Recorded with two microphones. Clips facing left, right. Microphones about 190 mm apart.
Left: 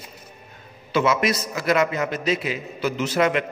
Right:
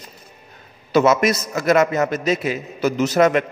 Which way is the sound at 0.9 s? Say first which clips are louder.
Right 5 dB; 45° right (ahead or behind).